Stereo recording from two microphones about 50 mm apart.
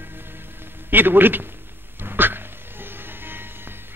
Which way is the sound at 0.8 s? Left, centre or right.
Right.